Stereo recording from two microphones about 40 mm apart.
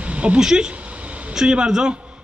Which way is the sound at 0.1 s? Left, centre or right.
Right.